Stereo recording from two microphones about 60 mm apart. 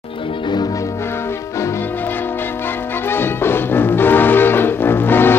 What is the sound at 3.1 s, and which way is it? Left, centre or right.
Music, left.